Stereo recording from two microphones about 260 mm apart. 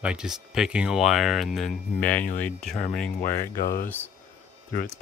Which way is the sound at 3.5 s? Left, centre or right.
Left.